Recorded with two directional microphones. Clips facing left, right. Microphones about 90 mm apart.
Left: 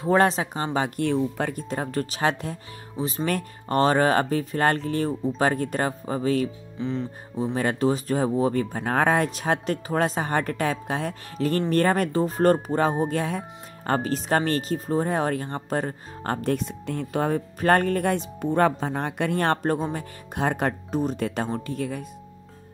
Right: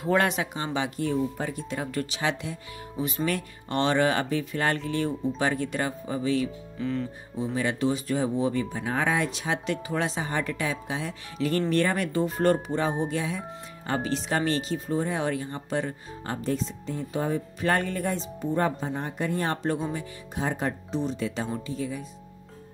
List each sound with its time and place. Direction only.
0.0 s speech: 35° left (ahead or behind)
0.7 s speech: 50° left (ahead or behind)
1.0 s speech: 65° left (ahead or behind)
1.6 s speech: 40° left (ahead or behind)
3.0 s speech: 30° left (ahead or behind)
3.3 s speech: 45° left (ahead or behind)
6.8 s speech: 20° left (ahead or behind)
7.5 s speech: 45° left (ahead or behind)